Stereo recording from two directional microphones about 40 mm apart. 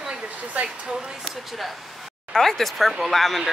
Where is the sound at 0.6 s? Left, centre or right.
Right.